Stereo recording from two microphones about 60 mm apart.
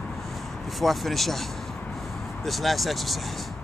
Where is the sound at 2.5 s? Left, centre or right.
Centre.